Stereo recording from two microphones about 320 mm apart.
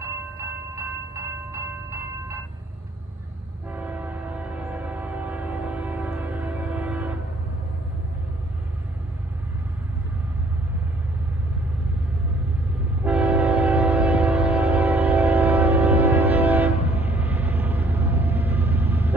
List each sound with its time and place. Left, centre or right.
0.7 s train: centre
3.7 s train horn: centre
13.0 s train: centre
16.8 s train: centre
17.1 s a sound: centre